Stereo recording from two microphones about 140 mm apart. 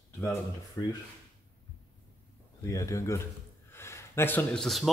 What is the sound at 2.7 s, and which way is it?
Speech, 25° left (ahead or behind).